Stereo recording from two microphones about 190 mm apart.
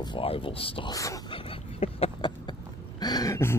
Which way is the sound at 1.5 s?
30° left (ahead or behind).